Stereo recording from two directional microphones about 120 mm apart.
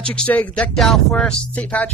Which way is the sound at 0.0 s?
10° left (ahead or behind).